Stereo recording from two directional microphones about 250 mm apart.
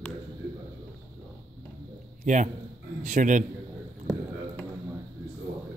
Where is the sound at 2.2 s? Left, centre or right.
Right.